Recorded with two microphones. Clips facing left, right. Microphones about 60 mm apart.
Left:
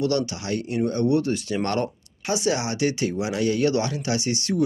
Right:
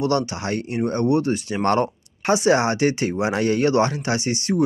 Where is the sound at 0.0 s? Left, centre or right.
Right.